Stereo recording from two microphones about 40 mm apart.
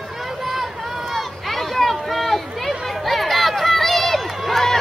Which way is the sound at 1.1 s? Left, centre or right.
Centre.